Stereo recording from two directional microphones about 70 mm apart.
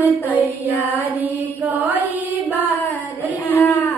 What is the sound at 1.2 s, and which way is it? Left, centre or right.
Speech, right.